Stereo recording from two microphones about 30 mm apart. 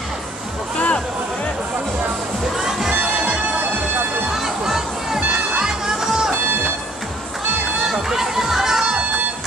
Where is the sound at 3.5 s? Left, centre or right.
Right.